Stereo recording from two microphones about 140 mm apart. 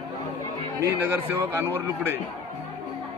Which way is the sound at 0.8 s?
15° right (ahead or behind).